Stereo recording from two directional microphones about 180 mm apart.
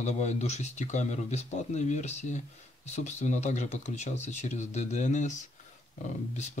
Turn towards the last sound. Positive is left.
turn(degrees=40)  # may be behind; listen again after turning